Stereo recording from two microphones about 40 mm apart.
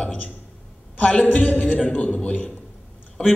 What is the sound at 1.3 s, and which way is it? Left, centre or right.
A man's voice, left.